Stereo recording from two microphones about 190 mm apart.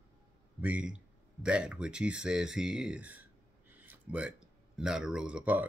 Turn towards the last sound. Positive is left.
turn(degrees=-5)  # may be behind; listen again after turning